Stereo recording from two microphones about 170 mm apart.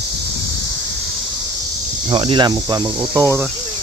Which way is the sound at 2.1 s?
30° right (ahead or behind).